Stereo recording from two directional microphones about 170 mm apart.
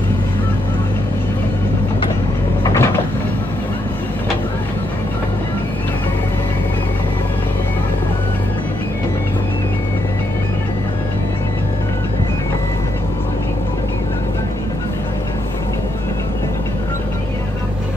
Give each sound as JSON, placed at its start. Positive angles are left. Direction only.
{"t": 2.6, "sound": "vehicle", "side_deg": 15}